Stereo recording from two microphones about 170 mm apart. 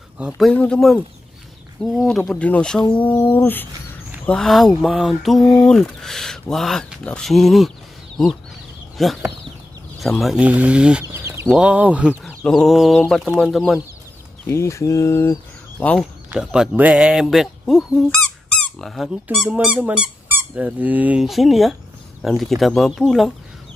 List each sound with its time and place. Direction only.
0.4 s speech: 5° left (ahead or behind)
8.9 s speech: centre (ahead or behind)
14.4 s speech: 15° left (ahead or behind)
16.3 s speech: 5° right (ahead or behind)